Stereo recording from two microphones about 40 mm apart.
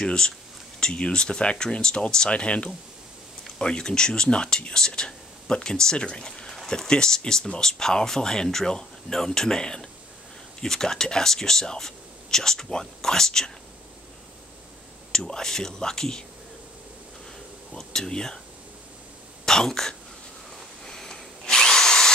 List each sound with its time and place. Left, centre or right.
0.0 s speech: centre
15.1 s speech: centre
17.7 s speech: centre
19.4 s speech: centre
20.8 s drill: centre